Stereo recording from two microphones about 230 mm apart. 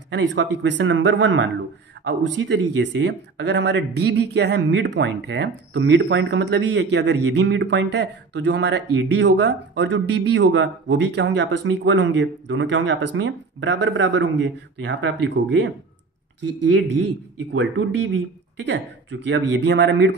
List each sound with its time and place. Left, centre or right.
0.1 s speech: right
16.7 s speech: right